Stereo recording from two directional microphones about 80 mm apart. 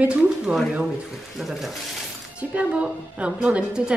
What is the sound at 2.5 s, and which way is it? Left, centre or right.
Speech, centre.